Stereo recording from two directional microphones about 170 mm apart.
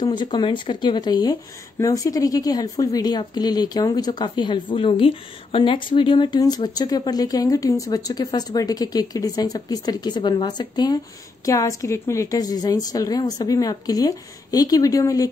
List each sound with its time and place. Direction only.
0.0 s speech: 25° left (ahead or behind)